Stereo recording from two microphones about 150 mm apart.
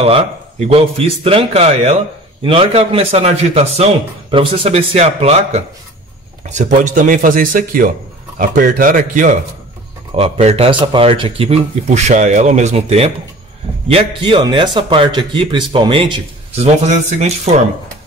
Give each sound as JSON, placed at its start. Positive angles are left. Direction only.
{"t": 0.0, "sound": "speech", "side_deg": -40}
{"t": 10.1, "sound": "speech", "side_deg": -45}